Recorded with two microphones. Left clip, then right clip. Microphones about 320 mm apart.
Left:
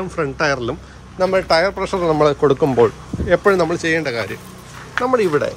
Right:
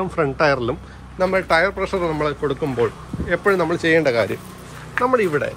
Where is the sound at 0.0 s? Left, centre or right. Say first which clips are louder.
Right 1 dB; centre.